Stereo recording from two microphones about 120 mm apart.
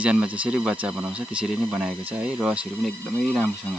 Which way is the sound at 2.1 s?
15° right (ahead or behind).